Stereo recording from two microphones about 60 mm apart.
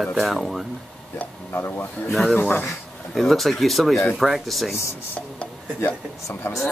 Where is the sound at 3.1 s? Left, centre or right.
Centre.